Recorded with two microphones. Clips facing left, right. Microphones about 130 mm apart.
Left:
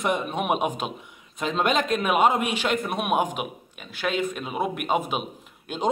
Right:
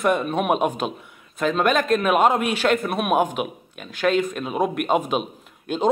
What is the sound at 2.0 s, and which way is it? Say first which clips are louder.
A man's voice: right 1 dB; 10° left (ahead or behind).